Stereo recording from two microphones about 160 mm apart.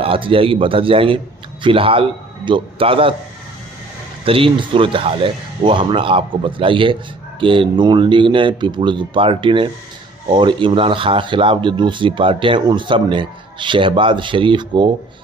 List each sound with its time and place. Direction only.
0.0 s a man's voice: 35° right (ahead or behind)
4.2 s speech: 35° right (ahead or behind)